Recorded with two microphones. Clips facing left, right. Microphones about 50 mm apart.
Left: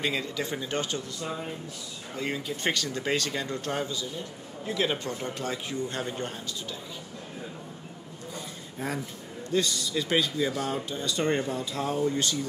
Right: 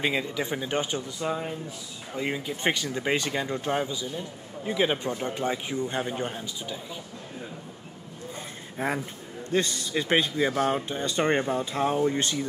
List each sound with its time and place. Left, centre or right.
0.0 s speech: centre
8.7 s a man's voice: right